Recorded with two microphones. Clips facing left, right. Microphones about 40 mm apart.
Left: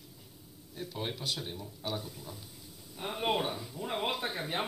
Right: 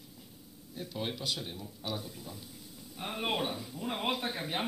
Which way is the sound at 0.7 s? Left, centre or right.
Left.